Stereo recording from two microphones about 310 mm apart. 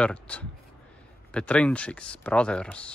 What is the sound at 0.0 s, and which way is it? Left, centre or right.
Speech, centre.